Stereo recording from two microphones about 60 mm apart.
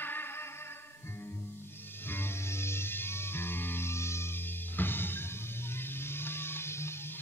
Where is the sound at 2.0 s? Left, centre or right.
Left.